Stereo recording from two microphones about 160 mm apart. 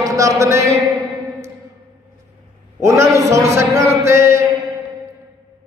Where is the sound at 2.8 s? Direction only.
20° right (ahead or behind).